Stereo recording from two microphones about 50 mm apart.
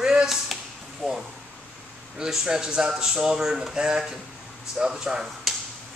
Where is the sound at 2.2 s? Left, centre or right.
Centre.